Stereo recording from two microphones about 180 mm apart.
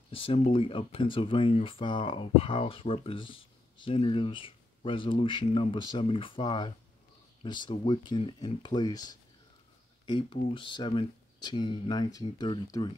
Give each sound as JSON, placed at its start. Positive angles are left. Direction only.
{"t": 0.1, "sound": "speech", "side_deg": 30}